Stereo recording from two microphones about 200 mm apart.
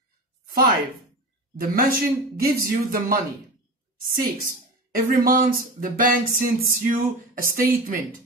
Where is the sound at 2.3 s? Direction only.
50° right (ahead or behind).